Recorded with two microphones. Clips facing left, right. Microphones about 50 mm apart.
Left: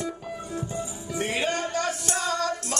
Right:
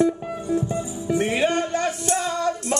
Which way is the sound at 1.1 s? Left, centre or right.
Centre.